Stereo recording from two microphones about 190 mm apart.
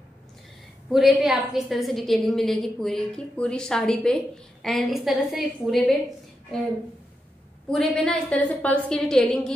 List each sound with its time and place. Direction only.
0.9 s a woman's voice: centre (ahead or behind)
7.7 s a woman's voice: centre (ahead or behind)